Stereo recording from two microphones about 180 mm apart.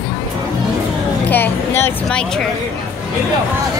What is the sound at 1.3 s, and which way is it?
Speech, 10° left (ahead or behind).